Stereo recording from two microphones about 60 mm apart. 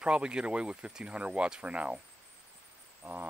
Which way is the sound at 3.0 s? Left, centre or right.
Right.